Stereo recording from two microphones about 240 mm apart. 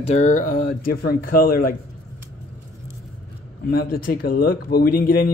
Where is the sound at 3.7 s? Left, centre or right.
Left.